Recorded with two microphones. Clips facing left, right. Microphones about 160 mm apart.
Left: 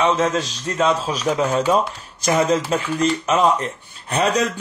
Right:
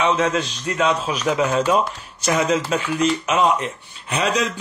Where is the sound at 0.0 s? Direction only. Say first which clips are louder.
Left 1 dB; 35° left (ahead or behind).